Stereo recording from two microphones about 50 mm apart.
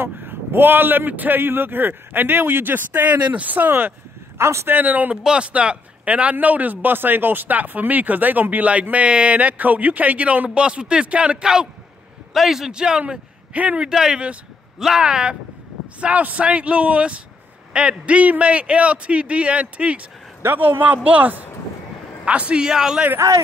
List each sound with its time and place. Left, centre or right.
0.0 s a man's voice: right
4.4 s a man's voice: right
4.6 s speech: right
5.1 s a man's voice: centre
13.8 s a man's voice: centre
16.0 s speech: right
20.4 s a man's voice: right
20.8 s speech: right
22.7 s a man's voice: centre